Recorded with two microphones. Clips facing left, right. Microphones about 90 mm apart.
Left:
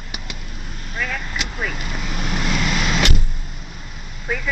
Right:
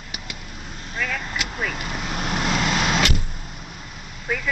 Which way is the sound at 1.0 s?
10° left (ahead or behind).